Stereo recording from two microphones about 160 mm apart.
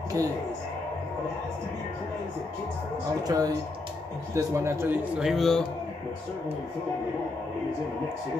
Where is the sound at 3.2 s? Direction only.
25° right (ahead or behind); by 5.6 s centre (ahead or behind).